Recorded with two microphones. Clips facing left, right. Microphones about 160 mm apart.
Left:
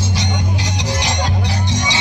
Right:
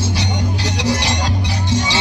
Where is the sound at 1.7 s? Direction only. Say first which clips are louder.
Right 6 dB; 15° left (ahead or behind).